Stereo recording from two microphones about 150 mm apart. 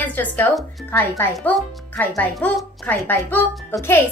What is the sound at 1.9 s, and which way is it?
Speech, 10° left (ahead or behind).